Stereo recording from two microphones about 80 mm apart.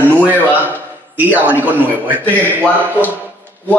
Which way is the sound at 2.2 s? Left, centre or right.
Left.